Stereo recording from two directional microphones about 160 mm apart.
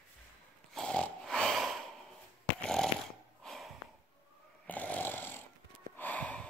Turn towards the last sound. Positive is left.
turn(degrees=10)  # may be behind; listen again after turning